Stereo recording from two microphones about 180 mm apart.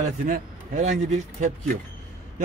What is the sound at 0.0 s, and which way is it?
Speech, 45° right (ahead or behind).